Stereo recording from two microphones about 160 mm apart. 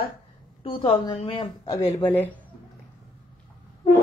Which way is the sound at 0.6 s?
35° left (ahead or behind).